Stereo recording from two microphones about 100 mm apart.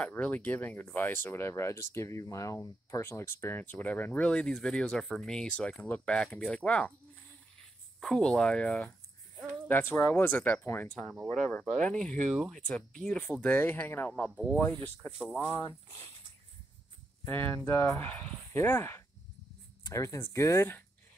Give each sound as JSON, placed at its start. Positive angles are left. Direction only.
{"t": 0.0, "sound": "speech", "side_deg": 15}
{"t": 11.6, "sound": "speech", "side_deg": 5}
{"t": 15.5, "sound": "speech", "side_deg": 25}
{"t": 17.2, "sound": "speech", "side_deg": 20}